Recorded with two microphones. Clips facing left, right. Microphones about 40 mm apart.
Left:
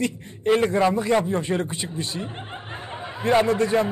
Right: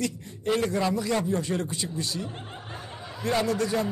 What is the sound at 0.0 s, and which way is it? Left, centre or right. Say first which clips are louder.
A man's voice: left 5 dB; left.